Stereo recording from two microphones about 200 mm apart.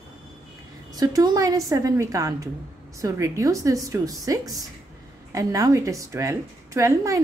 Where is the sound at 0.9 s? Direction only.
20° right (ahead or behind).